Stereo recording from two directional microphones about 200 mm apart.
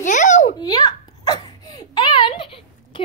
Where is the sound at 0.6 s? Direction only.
20° left (ahead or behind).